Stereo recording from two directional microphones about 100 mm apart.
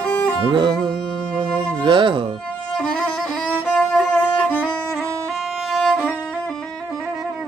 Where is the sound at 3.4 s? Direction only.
10° left (ahead or behind).